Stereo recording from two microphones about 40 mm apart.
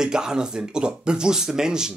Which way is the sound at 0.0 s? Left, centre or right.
Centre.